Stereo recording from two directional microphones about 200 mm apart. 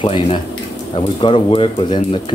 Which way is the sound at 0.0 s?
25° left (ahead or behind).